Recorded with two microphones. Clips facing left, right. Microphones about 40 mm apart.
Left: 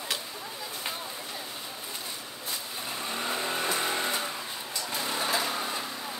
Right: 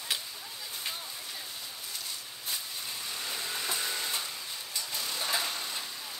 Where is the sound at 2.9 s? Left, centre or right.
Left.